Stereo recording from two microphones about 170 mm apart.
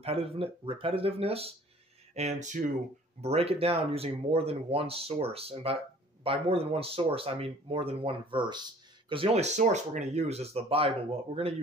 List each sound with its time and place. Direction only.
0.0 s speech: 35° right (ahead or behind)